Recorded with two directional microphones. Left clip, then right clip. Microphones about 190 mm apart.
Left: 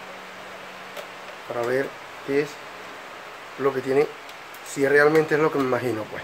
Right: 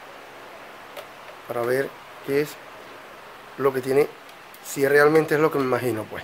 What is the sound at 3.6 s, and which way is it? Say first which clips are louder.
Speech: right 1 dB; 50° right (ahead or behind).